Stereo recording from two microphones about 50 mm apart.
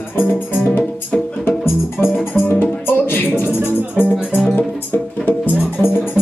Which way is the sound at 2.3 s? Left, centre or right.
Left.